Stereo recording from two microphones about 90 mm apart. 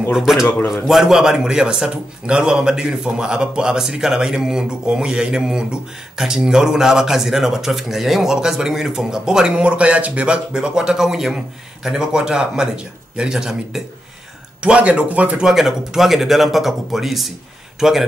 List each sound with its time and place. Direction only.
0.1 s a man's voice: 5° right (ahead or behind)